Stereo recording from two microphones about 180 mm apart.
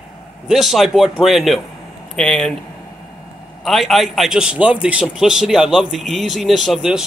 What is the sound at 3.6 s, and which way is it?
A man's voice, centre (ahead or behind).